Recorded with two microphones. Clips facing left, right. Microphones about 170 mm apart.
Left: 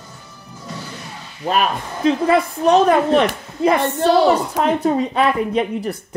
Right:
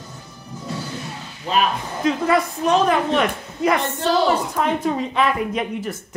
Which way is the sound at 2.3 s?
30° left (ahead or behind).